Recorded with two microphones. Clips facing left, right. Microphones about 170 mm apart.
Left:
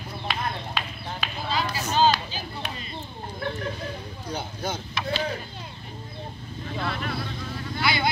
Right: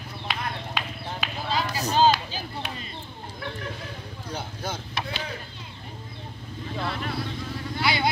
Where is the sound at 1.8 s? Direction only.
40° right (ahead or behind).